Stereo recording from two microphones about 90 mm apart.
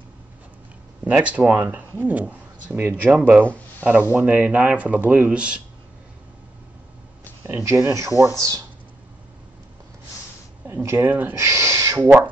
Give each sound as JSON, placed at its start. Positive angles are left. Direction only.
{"t": 1.0, "sound": "speech", "side_deg": -15}
{"t": 7.4, "sound": "speech", "side_deg": -25}
{"t": 10.7, "sound": "a sound", "side_deg": -35}
{"t": 11.0, "sound": "speech", "side_deg": -20}
{"t": 11.3, "sound": "owl", "side_deg": -30}